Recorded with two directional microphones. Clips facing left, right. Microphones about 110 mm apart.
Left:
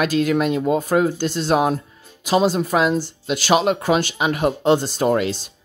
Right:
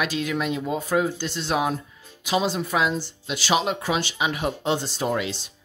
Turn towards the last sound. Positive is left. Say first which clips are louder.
# left 7 dB
turn(degrees=45)  # may be behind; listen again after turning